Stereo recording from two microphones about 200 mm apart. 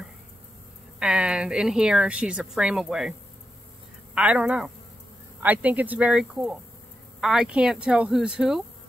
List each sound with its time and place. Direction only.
0.9 s a woman's voice: 5° right (ahead or behind)